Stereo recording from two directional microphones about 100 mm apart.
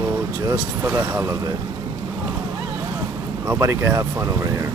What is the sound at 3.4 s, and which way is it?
Speech, 30° right (ahead or behind).